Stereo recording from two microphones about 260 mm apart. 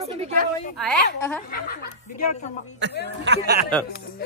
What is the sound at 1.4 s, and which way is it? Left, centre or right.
Speech, left.